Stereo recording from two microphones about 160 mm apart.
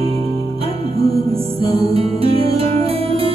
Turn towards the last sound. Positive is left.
turn(degrees=-40)  # may be behind; listen again after turning